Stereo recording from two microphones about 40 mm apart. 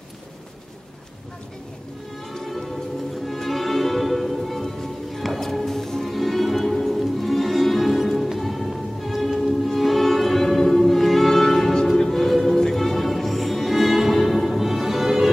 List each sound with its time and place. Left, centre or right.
3.3 s music: centre